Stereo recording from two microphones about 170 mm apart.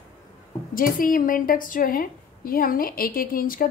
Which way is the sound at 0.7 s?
55° left (ahead or behind).